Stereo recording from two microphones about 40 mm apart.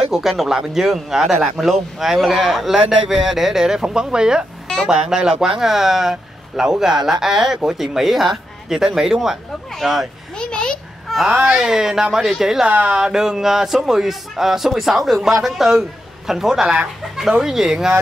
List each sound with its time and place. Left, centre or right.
0.1 s speech: centre
11.1 s speech: centre
11.4 s speech: centre
12.6 s speech: right
13.0 s a man's voice: centre